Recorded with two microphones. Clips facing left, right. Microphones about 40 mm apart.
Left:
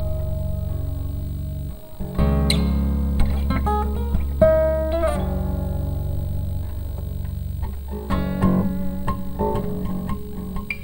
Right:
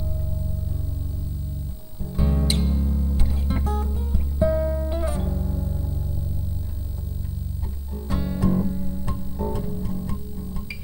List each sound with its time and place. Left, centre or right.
2.1 s music: left
7.9 s music: left